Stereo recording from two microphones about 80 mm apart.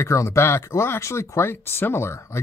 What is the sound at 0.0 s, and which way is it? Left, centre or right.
Speech, left.